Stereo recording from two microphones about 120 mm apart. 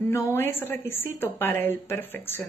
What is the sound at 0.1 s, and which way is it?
A woman's voice, 20° left (ahead or behind).